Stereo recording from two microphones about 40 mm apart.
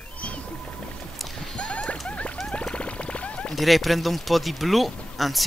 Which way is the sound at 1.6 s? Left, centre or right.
Left.